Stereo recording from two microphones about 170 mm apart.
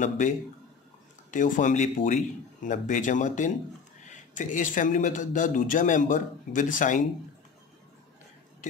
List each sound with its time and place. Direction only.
1.3 s a man's voice: 50° left (ahead or behind)